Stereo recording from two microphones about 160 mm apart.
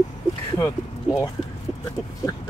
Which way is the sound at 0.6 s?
15° left (ahead or behind).